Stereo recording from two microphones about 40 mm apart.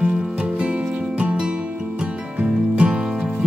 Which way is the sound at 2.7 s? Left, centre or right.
Right.